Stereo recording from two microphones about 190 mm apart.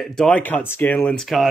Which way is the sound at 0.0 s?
5° left (ahead or behind).